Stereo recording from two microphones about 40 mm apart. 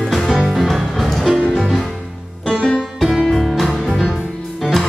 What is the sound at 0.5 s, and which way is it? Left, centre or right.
Music, centre.